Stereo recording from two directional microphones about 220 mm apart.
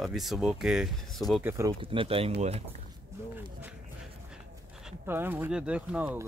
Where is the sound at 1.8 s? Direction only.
25° right (ahead or behind).